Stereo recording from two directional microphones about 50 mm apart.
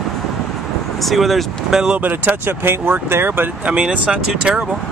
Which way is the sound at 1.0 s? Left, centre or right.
Centre.